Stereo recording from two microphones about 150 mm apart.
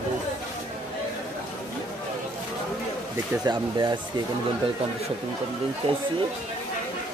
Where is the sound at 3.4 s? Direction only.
30° right (ahead or behind).